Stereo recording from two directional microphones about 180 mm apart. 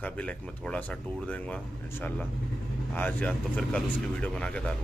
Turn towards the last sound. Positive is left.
turn(degrees=5)  # may be behind; listen again after turning